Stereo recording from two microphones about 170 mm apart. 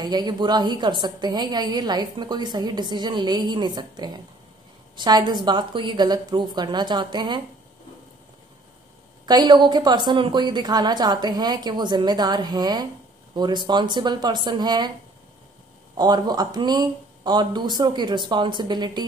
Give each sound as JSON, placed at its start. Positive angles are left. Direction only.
{"t": 0.0, "sound": "a woman's voice", "side_deg": -25}
{"t": 9.2, "sound": "a woman's voice", "side_deg": -25}
{"t": 16.0, "sound": "a woman's voice", "side_deg": -25}